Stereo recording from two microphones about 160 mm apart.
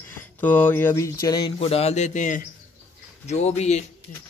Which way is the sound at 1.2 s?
25° left (ahead or behind).